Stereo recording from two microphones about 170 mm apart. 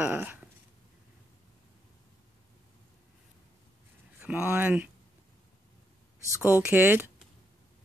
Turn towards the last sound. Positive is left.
turn(degrees=-10)  # may be behind; listen again after turning